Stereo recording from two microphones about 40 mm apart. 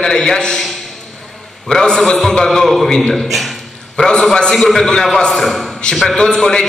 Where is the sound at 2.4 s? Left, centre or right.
Centre.